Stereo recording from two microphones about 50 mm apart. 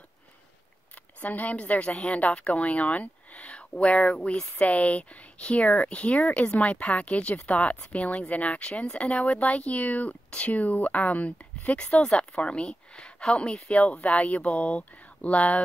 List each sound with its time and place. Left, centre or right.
1.2 s speech: left